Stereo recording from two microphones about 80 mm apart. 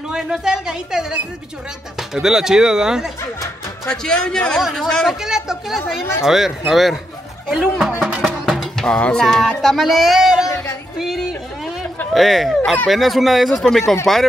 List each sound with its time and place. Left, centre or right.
0.1 s a man's voice: centre
3.2 s music: left
3.9 s speech: centre
4.6 s speech: centre
4.8 s speech: centre
5.2 s speech: centre
5.8 s speech: left
6.2 s speech: centre
8.5 s music: centre
9.6 s speech: centre
10.5 s a sound: left
11.0 s a sound: centre
12.1 s speech: centre